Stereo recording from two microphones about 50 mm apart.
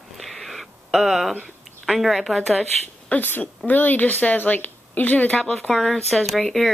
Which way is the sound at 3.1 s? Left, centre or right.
Left.